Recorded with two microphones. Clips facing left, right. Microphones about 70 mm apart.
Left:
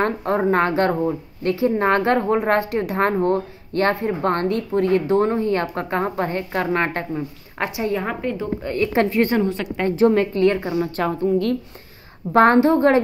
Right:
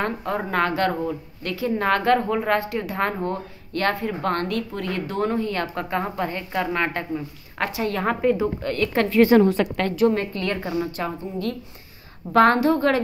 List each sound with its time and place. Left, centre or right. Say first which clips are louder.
0.0 s a woman's voice: left 6 dB; left
7.2 s speech: left 2 dB; left
8.0 s a woman's voice: right 4 dB; centre
8.6 s a woman's voice: left 6 dB; centre
9.2 s a woman's voice: right 4 dB; centre
9.8 s a woman's voice: left 4 dB; left
10.8 s a woman's voice: left 5 dB; left
12.4 s a woman's voice: left 3 dB; left